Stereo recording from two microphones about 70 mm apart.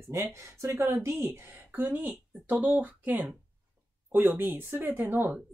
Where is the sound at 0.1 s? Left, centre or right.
Right.